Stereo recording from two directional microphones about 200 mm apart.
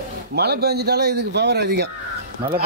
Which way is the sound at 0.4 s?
55° right (ahead or behind).